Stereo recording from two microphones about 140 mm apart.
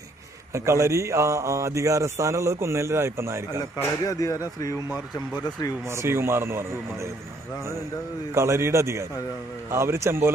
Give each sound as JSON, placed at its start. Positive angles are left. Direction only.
{"t": 0.5, "sound": "a man's voice", "side_deg": -20}
{"t": 3.8, "sound": "speech", "side_deg": 25}
{"t": 5.9, "sound": "speech", "side_deg": -20}
{"t": 8.4, "sound": "a man's voice", "side_deg": -20}